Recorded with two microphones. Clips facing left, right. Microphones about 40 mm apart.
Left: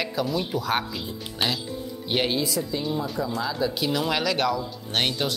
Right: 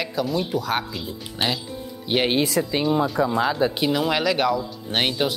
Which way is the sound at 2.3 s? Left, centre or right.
Right.